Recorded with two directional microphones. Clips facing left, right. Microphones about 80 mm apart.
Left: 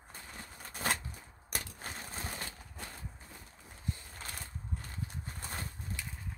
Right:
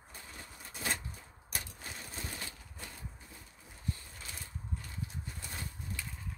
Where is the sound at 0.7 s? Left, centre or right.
Left.